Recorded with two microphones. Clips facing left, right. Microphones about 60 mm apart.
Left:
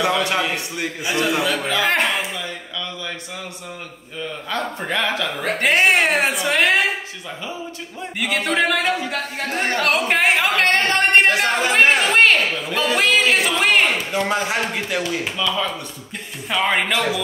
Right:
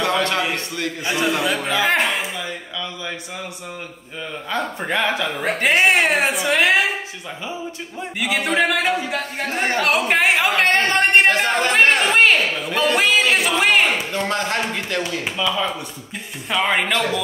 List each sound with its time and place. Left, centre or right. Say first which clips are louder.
0.2 s a man's voice: even; centre
1.1 s a man's voice: left 1 dB; centre
4.5 s speech: right 2 dB; centre
5.6 s a man's voice: even; centre
8.2 s a man's voice: right 1 dB; centre
14.1 s a man's voice: left 1 dB; centre
15.3 s speech: right 3 dB; centre
16.4 s a man's voice: even; centre